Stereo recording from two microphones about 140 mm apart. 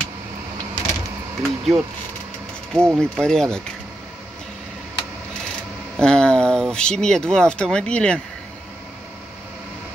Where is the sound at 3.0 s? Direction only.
5° left (ahead or behind).